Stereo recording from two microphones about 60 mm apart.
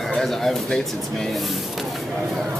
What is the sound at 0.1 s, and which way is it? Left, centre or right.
Pigeon, centre.